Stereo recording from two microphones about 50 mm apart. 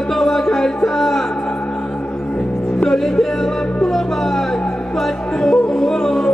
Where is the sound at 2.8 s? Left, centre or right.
Centre.